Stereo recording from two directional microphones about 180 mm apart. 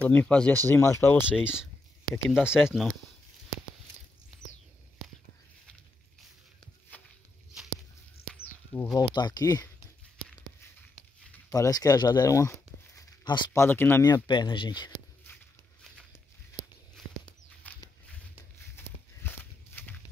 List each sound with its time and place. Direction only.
0.0 s speech: 10° left (ahead or behind)
2.2 s speech: 5° right (ahead or behind)
4.3 s a sound: centre (ahead or behind)
6.9 s a sound: 10° left (ahead or behind)
8.9 s speech: 20° left (ahead or behind)
11.3 s speech: 15° left (ahead or behind)
14.0 s speech: 25° left (ahead or behind)
16.9 s a sound: 10° left (ahead or behind)
18.8 s horse: 10° left (ahead or behind)